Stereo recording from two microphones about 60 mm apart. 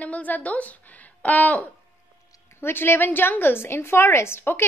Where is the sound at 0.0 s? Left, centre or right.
Left.